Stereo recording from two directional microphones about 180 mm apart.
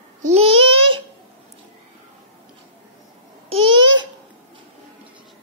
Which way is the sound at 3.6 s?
25° right (ahead or behind).